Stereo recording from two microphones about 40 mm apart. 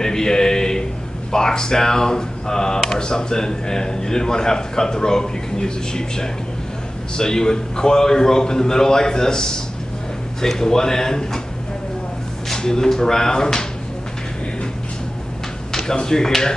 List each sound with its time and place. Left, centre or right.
0.0 s a sound: centre
1.3 s speech: centre
12.5 s speech: centre
15.7 s speech: centre